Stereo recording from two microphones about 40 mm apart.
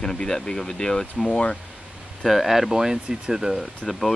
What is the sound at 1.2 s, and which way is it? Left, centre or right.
Speech, left.